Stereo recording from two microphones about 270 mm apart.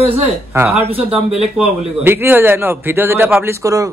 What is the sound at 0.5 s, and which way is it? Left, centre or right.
A man's voice, centre.